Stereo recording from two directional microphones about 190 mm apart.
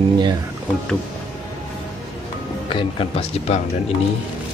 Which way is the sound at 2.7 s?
30° left (ahead or behind).